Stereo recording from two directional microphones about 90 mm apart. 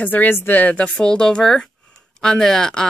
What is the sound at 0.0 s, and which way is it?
A woman's voice, 20° left (ahead or behind).